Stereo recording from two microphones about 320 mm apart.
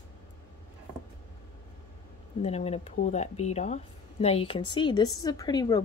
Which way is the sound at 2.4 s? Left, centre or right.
Centre.